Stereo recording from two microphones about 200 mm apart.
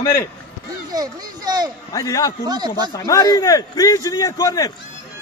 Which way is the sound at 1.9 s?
15° left (ahead or behind).